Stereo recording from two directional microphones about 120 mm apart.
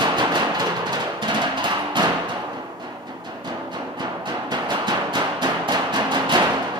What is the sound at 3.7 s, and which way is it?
Music, 35° right (ahead or behind).